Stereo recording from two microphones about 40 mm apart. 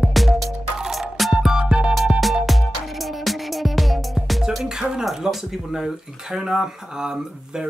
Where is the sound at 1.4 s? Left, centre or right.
Centre.